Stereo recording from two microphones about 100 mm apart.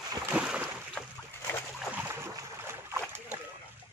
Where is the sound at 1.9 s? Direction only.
25° right (ahead or behind).